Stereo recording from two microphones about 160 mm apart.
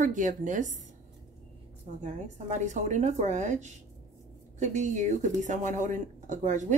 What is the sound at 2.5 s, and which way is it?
A woman's voice, 50° right (ahead or behind).